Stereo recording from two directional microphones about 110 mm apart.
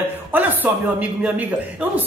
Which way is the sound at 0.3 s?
15° right (ahead or behind).